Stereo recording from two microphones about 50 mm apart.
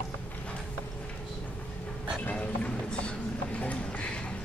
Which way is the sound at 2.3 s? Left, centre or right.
Left.